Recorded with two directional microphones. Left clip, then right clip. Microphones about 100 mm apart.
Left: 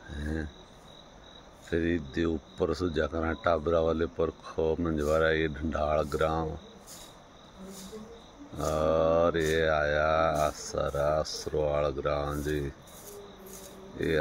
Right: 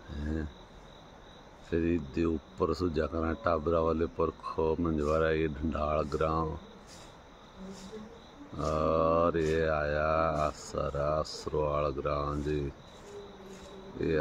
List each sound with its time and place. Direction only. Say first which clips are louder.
0.1 s cricket: left 1 dB; centre (ahead or behind)
1.7 s speech: left 1 dB; 5° right (ahead or behind)
8.7 s speech: left 2 dB; centre (ahead or behind)